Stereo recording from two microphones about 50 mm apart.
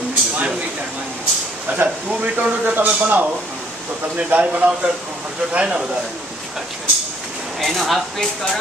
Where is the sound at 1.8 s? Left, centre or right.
Right.